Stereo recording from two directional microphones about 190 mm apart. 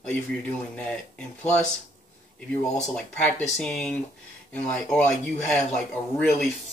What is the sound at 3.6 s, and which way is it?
Speech, 5° left (ahead or behind).